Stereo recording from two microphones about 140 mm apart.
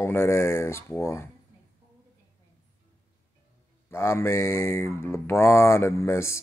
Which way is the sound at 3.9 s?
20° left (ahead or behind).